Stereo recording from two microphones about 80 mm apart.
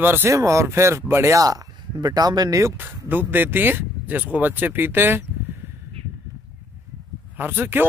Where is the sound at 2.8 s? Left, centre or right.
Right.